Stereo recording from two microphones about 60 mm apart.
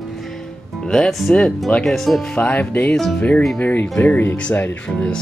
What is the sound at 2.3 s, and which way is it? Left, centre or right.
Speech, left.